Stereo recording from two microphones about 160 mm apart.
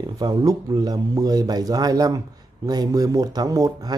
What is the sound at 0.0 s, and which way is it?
Speech, 25° right (ahead or behind).